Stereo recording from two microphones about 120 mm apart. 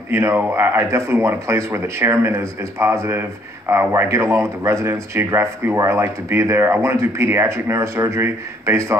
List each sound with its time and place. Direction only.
0.1 s speech: 20° right (ahead or behind)